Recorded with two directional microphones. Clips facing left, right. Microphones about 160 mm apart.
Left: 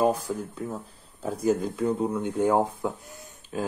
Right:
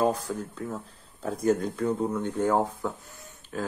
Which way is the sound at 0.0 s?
10° left (ahead or behind).